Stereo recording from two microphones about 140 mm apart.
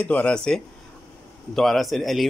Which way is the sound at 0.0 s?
10° left (ahead or behind).